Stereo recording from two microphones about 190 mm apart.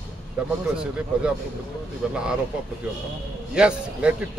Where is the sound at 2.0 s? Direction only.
5° right (ahead or behind).